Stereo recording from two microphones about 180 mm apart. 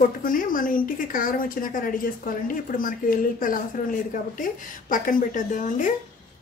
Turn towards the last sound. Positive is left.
turn(degrees=45)  # may be behind; listen again after turning